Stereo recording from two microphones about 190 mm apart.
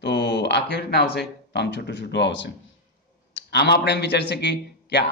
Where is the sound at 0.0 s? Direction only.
65° left (ahead or behind).